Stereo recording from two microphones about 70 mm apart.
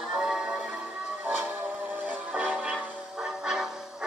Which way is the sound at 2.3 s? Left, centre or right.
Centre.